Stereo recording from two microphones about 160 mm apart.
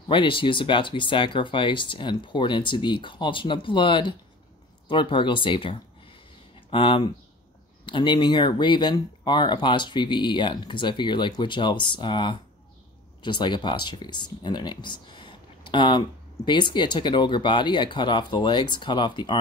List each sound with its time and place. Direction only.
0.1 s speech: 30° left (ahead or behind)